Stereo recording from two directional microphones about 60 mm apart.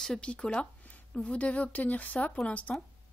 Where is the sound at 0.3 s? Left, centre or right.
Centre.